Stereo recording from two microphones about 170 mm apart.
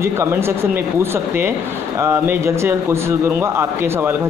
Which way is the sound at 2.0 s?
15° right (ahead or behind).